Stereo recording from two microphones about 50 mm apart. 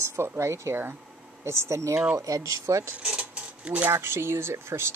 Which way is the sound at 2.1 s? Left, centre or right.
Right.